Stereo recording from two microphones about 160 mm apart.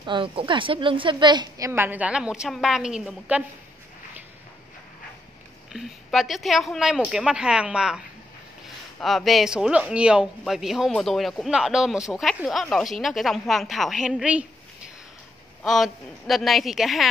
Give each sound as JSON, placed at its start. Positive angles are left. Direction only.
{"t": 0.0, "sound": "a woman's voice", "side_deg": -30}
{"t": 1.7, "sound": "speech", "side_deg": -15}
{"t": 5.7, "sound": "speech", "side_deg": 0}
{"t": 9.0, "sound": "speech", "side_deg": 0}
{"t": 15.6, "sound": "speech", "side_deg": 0}